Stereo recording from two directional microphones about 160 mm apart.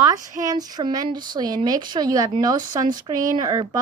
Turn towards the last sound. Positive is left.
turn(degrees=-25)  # may be behind; listen again after turning